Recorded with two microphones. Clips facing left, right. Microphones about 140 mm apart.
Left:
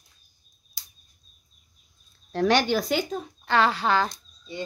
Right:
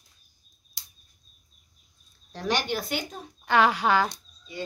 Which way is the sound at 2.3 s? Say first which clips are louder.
Left 7 dB; 75° left (ahead or behind).